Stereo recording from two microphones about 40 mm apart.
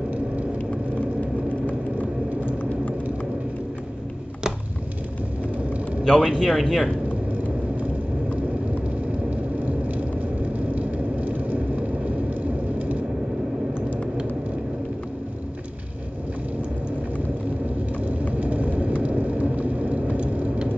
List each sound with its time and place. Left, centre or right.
5.6 s vehicle: right
6.0 s speech: centre
9.3 s vehicle: right
18.3 s vehicle: right